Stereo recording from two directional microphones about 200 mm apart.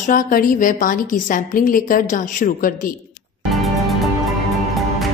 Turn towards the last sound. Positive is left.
turn(degrees=0)  # may be behind; listen again after turning